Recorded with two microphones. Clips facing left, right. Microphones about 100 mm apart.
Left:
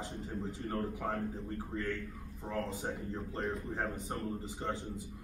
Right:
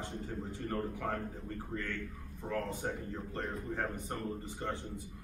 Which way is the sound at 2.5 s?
20° left (ahead or behind).